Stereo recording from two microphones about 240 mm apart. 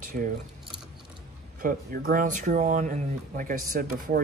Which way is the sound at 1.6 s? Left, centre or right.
Right.